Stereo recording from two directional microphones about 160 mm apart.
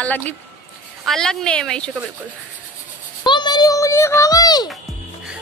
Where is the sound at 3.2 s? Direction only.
30° left (ahead or behind).